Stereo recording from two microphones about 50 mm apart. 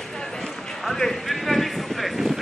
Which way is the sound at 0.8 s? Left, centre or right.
Centre.